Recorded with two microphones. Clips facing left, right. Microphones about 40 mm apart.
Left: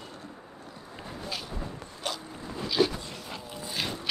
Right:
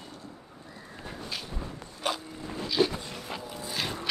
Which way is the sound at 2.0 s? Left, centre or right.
Centre.